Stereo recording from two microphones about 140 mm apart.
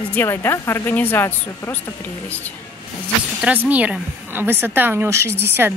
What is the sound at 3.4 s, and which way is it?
A woman's voice, 10° right (ahead or behind).